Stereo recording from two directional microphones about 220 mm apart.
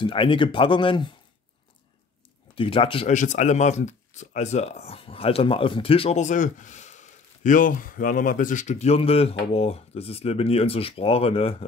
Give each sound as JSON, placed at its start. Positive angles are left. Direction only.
{"t": 0.0, "sound": "speech", "side_deg": 25}
{"t": 2.5, "sound": "speech", "side_deg": 25}